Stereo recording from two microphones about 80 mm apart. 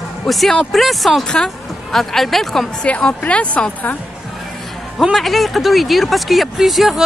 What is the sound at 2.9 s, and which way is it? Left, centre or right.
A woman's voice, centre.